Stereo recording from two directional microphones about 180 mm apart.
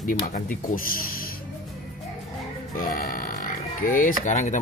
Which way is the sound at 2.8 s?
50° left (ahead or behind).